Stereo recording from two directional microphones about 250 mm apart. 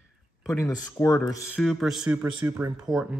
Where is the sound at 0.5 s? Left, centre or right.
Centre.